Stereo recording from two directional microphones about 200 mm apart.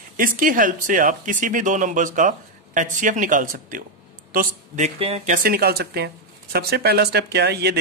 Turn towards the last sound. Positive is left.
turn(degrees=-55)  # may be behind; listen again after turning